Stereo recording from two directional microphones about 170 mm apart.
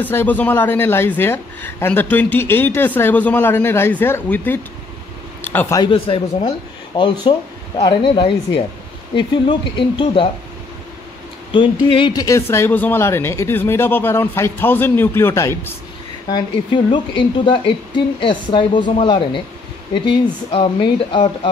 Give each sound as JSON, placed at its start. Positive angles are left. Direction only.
{"t": 0.0, "sound": "a man's voice", "side_deg": 10}
{"t": 5.8, "sound": "speech", "side_deg": 30}
{"t": 11.5, "sound": "speech", "side_deg": 30}
{"t": 16.3, "sound": "speech", "side_deg": 25}